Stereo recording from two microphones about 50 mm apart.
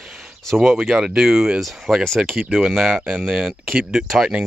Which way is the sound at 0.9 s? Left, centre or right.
Centre.